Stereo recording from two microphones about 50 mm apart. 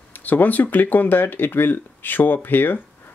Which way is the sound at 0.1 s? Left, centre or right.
Left.